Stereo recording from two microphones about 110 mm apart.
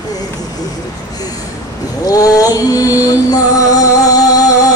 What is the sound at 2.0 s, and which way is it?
Music, 35° left (ahead or behind).